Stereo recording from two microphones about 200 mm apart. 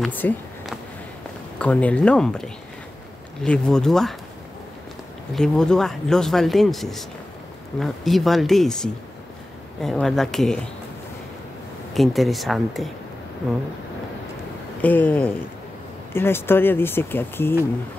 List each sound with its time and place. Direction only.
0.0 s speech: 10° left (ahead or behind)
1.6 s speech: 5° left (ahead or behind)
5.3 s speech: 5° left (ahead or behind)
11.9 s speech: centre (ahead or behind)
14.8 s speech: 10° left (ahead or behind)